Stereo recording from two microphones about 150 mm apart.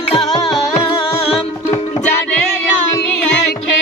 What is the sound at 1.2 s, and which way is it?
Music, 40° left (ahead or behind).